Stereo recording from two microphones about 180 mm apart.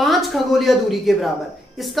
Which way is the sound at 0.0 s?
Centre (ahead or behind).